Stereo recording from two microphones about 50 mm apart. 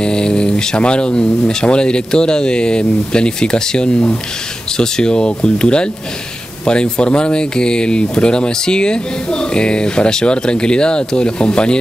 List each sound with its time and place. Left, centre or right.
0.0 s speech: centre